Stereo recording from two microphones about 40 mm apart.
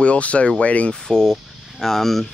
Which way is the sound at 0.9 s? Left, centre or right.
Centre.